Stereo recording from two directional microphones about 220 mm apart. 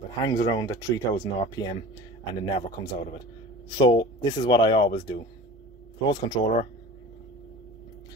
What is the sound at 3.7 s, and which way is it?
Speech, 20° left (ahead or behind).